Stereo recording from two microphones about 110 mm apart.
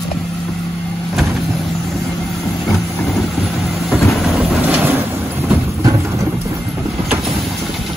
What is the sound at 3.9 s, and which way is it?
Train, centre (ahead or behind).